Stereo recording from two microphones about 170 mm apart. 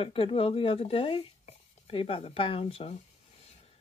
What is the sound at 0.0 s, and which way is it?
Speech, 30° left (ahead or behind).